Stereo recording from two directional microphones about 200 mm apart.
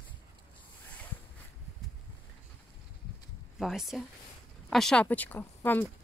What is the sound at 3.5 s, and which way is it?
Speech, centre (ahead or behind).